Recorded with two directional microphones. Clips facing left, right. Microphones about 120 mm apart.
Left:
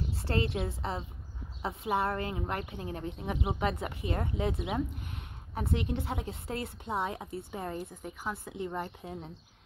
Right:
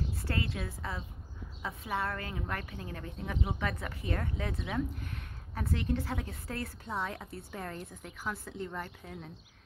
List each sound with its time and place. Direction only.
0.1 s a woman's voice: 25° left (ahead or behind)
7.7 s a woman's voice: 10° left (ahead or behind); by 9.3 s 25° left (ahead or behind)